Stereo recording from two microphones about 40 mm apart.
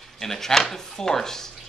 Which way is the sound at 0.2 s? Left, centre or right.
Centre.